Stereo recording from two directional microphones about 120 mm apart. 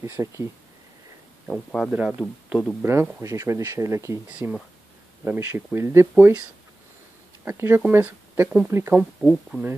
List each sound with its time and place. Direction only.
0.0 s speech: 25° right (ahead or behind)
1.5 s speech: centre (ahead or behind)
1.9 s speech: 10° right (ahead or behind)
2.8 s speech: 20° right (ahead or behind)
4.3 s speech: 10° right (ahead or behind)
7.4 s speech: 20° right (ahead or behind)